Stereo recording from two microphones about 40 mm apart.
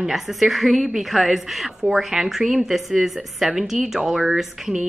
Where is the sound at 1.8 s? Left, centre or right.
Centre.